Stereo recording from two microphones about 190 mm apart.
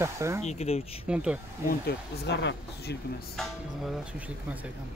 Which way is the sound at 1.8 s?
60° left (ahead or behind).